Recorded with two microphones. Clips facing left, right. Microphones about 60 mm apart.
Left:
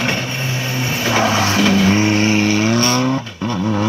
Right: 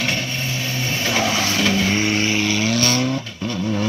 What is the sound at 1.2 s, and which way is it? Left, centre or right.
Music, left.